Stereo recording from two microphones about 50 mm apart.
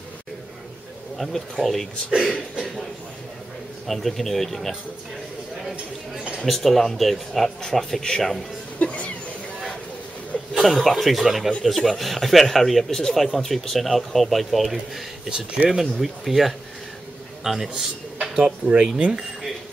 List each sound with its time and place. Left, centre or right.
1.1 s speech: centre
3.8 s speech: centre
6.1 s speech: centre
6.4 s speech: centre
8.7 s a sound: left
10.5 s speech: centre
15.2 s a man's voice: centre